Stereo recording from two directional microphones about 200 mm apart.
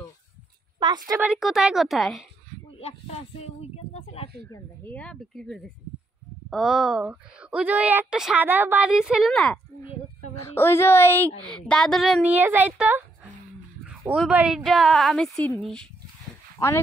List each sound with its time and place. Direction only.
0.7 s a woman's voice: 20° right (ahead or behind)
1.2 s a woman's voice: centre (ahead or behind)
3.7 s a sound: 30° left (ahead or behind)
4.5 s a woman's voice: 10° left (ahead or behind)
10.3 s a woman's voice: 15° left (ahead or behind)
16.5 s speech: 10° left (ahead or behind)